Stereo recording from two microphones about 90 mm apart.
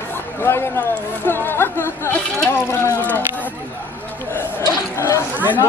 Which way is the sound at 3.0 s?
15° left (ahead or behind).